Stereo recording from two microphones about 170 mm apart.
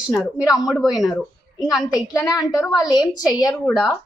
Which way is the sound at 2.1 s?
20° left (ahead or behind).